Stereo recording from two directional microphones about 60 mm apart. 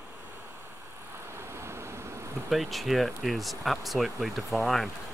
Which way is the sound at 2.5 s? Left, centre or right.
Centre.